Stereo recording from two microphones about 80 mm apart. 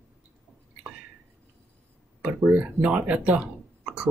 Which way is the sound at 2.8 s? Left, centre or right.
Centre.